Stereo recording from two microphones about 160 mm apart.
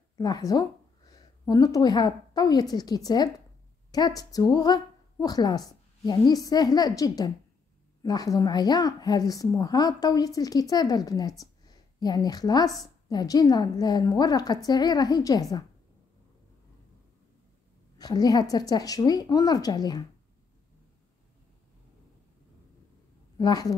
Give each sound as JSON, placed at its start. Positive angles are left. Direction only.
{"t": 0.2, "sound": "a woman's voice", "side_deg": 25}
{"t": 17.9, "sound": "speech", "side_deg": 25}
{"t": 23.3, "sound": "a woman's voice", "side_deg": 25}